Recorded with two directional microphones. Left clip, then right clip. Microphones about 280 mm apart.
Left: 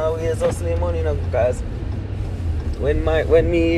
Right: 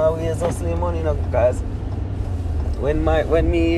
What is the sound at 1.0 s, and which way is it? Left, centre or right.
Speech, centre.